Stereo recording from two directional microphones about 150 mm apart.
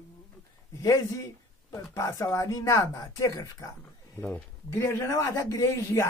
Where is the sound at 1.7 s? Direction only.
20° left (ahead or behind).